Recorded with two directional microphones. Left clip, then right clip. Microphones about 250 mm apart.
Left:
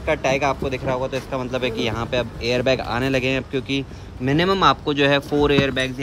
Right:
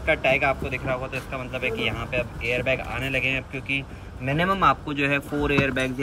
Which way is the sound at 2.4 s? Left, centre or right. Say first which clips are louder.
Left 5 dB; left.